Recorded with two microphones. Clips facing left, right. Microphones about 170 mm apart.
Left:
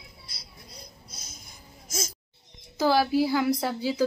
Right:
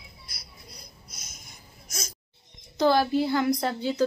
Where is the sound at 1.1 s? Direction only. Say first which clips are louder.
Left 2 dB; 30° left (ahead or behind).